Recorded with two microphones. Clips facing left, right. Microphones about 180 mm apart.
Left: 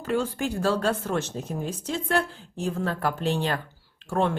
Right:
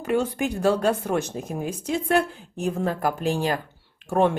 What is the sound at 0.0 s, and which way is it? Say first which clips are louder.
A woman's voice: right 3 dB; 20° right (ahead or behind).